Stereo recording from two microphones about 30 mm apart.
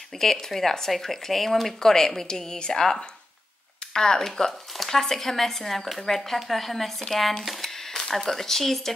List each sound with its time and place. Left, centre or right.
0.2 s speech: centre
7.6 s a sound: centre
8.1 s speech: centre